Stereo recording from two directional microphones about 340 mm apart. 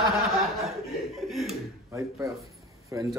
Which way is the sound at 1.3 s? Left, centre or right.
Centre.